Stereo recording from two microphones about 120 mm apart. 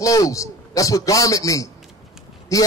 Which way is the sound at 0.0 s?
30° left (ahead or behind).